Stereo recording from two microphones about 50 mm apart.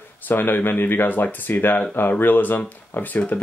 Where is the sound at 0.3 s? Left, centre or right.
Left.